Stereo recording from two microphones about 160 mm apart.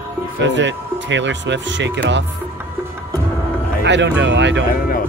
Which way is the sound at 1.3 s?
90° right.